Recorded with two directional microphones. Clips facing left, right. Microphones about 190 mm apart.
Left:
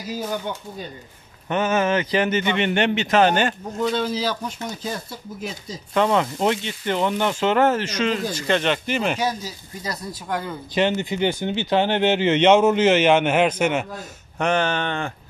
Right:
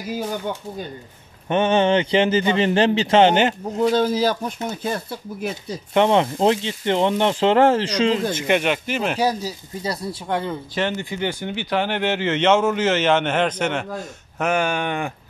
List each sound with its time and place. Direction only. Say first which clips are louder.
1.5 s speech: right 3 dB; 30° right (ahead or behind)
3.9 s speech: right 5 dB; 45° right (ahead or behind)
5.9 s speech: right 3 dB; 25° right (ahead or behind)
8.5 s speech: even; 5° right (ahead or behind)
9.2 s speech: right 4 dB; 35° right (ahead or behind)
10.7 s speech: left 6 dB; 20° left (ahead or behind)
14.4 s speech: even; 10° right (ahead or behind)